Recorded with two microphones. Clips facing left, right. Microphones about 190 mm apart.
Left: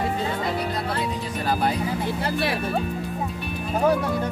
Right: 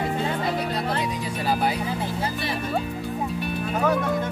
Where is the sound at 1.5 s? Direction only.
10° right (ahead or behind).